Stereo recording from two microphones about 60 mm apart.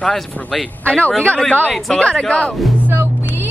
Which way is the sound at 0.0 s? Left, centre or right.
Centre.